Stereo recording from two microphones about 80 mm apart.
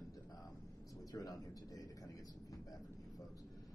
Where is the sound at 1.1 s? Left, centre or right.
Left.